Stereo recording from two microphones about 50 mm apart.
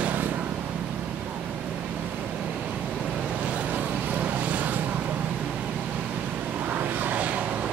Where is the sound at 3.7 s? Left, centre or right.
Right.